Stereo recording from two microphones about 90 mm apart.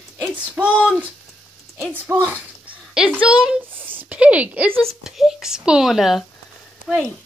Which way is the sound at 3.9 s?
15° right (ahead or behind).